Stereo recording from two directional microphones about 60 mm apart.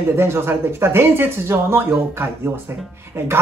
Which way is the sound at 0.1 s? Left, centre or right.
Right.